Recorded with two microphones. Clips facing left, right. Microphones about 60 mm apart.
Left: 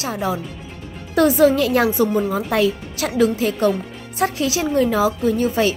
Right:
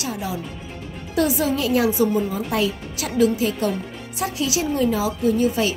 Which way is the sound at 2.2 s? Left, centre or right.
Left.